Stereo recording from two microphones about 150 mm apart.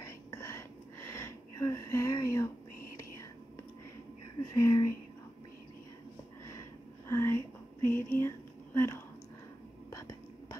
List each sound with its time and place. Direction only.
0.0 s whispering: 15° left (ahead or behind)
4.6 s speech: 20° left (ahead or behind)
7.1 s a sound: 15° left (ahead or behind)
9.8 s whispering: 20° left (ahead or behind)